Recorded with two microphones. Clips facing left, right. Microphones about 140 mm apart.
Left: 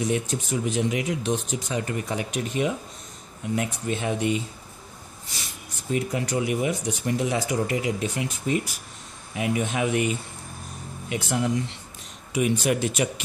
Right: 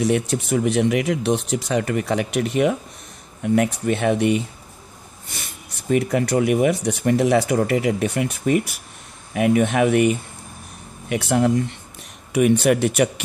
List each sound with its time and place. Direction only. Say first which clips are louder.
0.0 s speech: right 6 dB; 70° right (ahead or behind)